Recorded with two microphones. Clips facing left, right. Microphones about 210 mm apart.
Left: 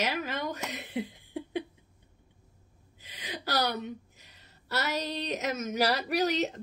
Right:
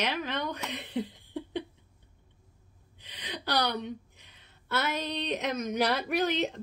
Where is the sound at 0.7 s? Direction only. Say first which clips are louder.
Right 1 dB; 10° left (ahead or behind).